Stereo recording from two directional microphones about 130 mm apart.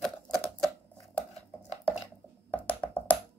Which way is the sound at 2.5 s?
15° left (ahead or behind).